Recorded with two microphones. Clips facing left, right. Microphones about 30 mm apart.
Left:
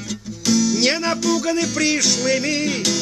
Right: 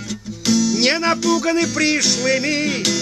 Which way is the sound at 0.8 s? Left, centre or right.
Right.